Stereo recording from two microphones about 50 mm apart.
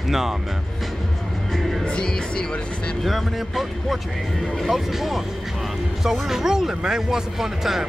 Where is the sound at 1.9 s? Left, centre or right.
Centre.